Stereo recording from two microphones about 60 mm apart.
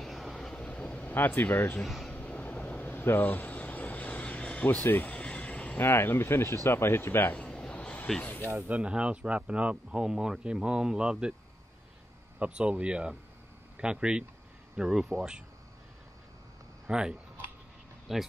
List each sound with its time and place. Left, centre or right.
0.0 s vehicle: centre
0.6 s vehicle: left
5.8 s speech: left
7.3 s a sound: centre
8.2 s speech: left
8.6 s speech: right
12.4 s speech: centre
16.8 s speech: centre
18.1 s speech: centre